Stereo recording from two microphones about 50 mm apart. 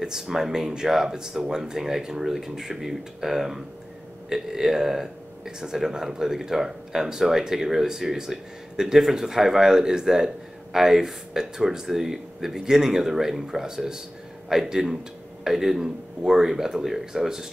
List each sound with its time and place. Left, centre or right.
0.0 s speech: centre